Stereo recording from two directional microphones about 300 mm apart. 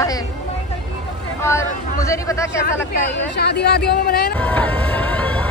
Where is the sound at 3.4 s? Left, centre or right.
Left.